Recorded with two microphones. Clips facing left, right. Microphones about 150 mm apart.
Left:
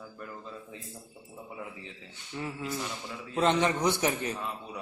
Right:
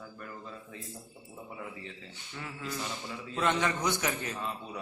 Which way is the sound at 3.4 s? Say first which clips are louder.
Left 4 dB; 30° left (ahead or behind).